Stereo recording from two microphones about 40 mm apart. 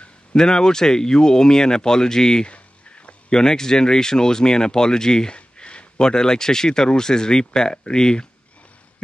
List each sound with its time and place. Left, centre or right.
0.3 s speech: centre